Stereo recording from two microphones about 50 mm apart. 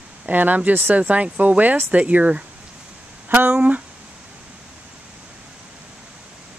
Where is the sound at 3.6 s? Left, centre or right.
Right.